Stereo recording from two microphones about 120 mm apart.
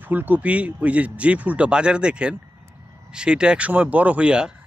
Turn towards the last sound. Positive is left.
turn(degrees=-10)  # may be behind; listen again after turning